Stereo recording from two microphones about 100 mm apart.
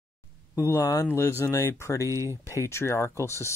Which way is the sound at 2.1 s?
30° right (ahead or behind).